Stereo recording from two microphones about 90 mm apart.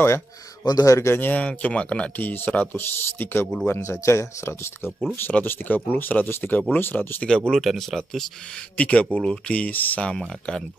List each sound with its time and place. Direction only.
0.7 s speech: 40° left (ahead or behind); by 7.2 s 20° left (ahead or behind)
7.2 s speech: 10° left (ahead or behind)
8.7 s speech: 15° left (ahead or behind)